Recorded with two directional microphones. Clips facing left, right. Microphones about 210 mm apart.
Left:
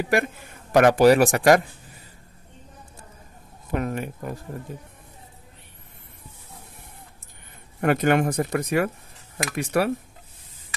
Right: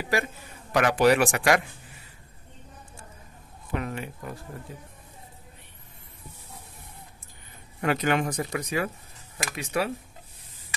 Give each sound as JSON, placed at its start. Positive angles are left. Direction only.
{"t": 0.1, "sound": "a man's voice", "side_deg": 50}
{"t": 3.7, "sound": "speech", "side_deg": 45}
{"t": 7.8, "sound": "speech", "side_deg": 50}